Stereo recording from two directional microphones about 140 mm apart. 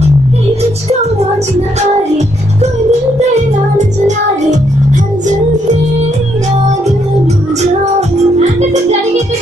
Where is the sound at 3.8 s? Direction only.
60° right (ahead or behind).